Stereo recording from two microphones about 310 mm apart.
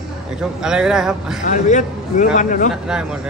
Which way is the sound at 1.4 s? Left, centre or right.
Left.